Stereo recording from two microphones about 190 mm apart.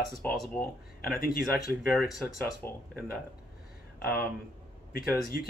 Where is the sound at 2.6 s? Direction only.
10° left (ahead or behind).